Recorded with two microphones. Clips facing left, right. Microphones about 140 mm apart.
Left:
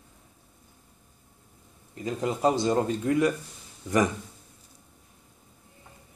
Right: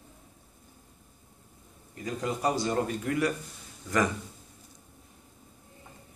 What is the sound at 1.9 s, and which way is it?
Speech, 25° left (ahead or behind).